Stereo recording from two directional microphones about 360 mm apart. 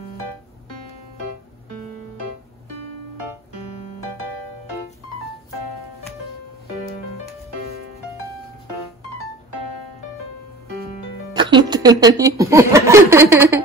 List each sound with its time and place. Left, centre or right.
3.6 s music: centre
11.3 s speech: centre